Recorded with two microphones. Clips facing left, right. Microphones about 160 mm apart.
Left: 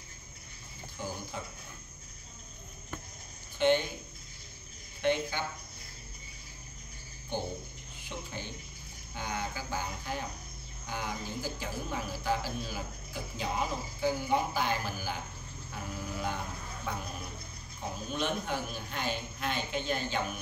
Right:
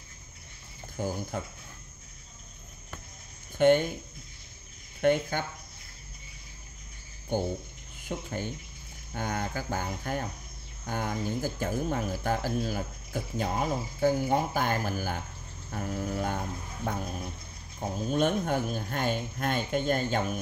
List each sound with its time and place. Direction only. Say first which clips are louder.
0.9 s speech: right 7 dB; 50° right (ahead or behind)
3.5 s speech: right 5 dB; 50° right (ahead or behind)
5.0 s speech: right 5 dB; 50° right (ahead or behind)
8.1 s speech: right 7 dB; 50° right (ahead or behind)